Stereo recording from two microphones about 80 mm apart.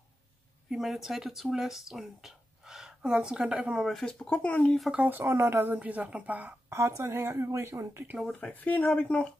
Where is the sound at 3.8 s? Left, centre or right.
Centre.